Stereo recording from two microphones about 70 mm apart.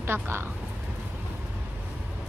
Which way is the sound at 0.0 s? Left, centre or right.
Right.